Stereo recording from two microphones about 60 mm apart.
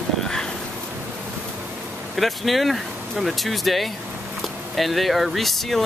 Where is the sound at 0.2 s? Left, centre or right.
Centre.